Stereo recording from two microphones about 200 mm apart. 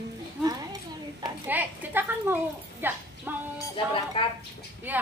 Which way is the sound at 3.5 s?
25° left (ahead or behind).